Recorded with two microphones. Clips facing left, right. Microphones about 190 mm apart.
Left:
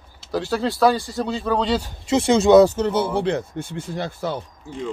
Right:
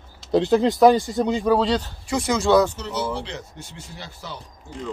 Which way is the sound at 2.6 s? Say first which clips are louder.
Left 7 dB; 45° left (ahead or behind).